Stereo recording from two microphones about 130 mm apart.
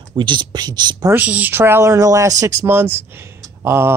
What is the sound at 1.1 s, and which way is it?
Speech, 10° right (ahead or behind).